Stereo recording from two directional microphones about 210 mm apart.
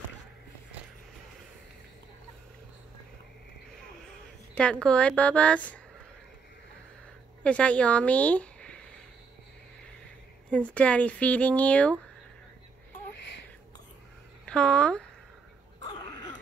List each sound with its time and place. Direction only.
4.6 s a woman's voice: 5° left (ahead or behind)
7.4 s speech: 5° left (ahead or behind)
10.5 s speech: 5° left (ahead or behind)
14.4 s speech: 5° left (ahead or behind)
16.1 s a sound: 20° left (ahead or behind)